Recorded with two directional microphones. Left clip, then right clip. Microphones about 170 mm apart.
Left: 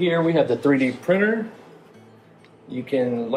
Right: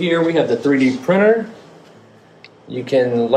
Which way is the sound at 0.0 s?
35° left (ahead or behind).